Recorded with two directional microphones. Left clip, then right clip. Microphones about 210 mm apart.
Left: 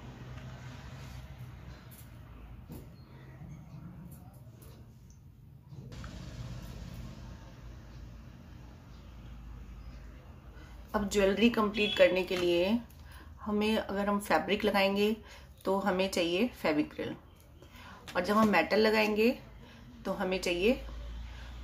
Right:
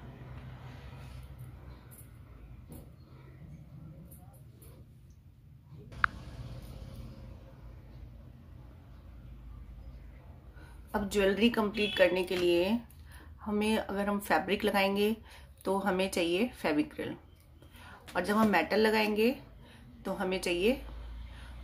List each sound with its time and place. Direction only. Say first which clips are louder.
10.9 s speech: left 1 dB; 10° right (ahead or behind)